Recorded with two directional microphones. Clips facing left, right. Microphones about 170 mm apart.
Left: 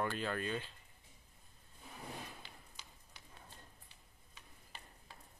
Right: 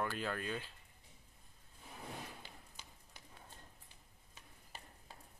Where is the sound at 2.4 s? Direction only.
50° right (ahead or behind).